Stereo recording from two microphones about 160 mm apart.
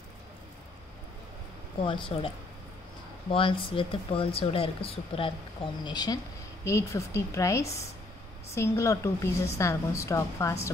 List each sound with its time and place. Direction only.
2.1 s a woman's voice: 35° left (ahead or behind)